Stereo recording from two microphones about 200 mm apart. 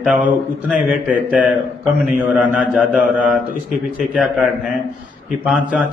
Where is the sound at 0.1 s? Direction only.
5° right (ahead or behind).